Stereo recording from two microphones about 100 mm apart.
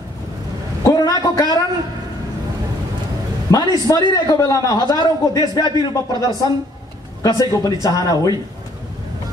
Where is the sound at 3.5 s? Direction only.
35° left (ahead or behind).